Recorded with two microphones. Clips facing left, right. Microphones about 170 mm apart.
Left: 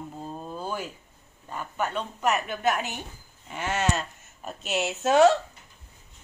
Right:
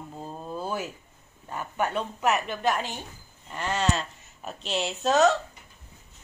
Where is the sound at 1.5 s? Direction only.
10° right (ahead or behind).